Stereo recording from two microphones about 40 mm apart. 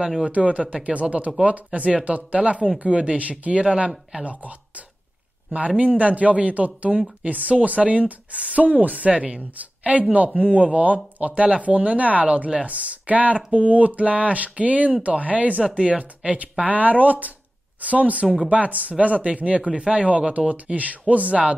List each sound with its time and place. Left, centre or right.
0.2 s a woman's voice: right